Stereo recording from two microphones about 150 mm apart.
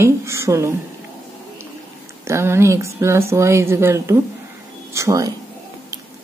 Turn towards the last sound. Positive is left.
turn(degrees=-20)  # may be behind; listen again after turning